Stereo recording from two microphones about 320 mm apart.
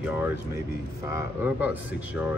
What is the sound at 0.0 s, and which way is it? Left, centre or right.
A man's voice, centre.